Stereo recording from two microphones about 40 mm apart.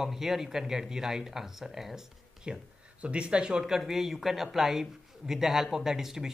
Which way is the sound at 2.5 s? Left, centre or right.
Right.